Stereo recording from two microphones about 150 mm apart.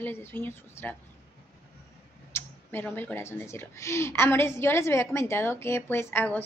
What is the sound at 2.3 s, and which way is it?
Speech, 15° left (ahead or behind).